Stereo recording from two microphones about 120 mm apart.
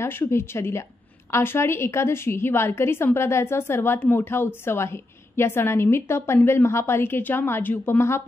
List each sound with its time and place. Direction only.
0.0 s a woman's voice: 20° left (ahead or behind)